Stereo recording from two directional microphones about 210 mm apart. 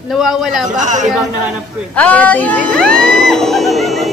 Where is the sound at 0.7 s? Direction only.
35° right (ahead or behind).